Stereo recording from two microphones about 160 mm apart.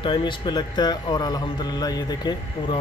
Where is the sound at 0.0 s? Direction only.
30° left (ahead or behind).